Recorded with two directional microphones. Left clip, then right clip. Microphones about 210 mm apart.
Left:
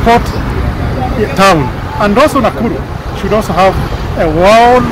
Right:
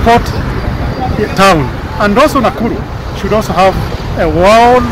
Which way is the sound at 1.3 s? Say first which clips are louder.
Even; 5° right (ahead or behind).